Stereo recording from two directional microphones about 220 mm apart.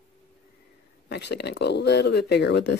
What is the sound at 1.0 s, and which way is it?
Speech, 50° left (ahead or behind).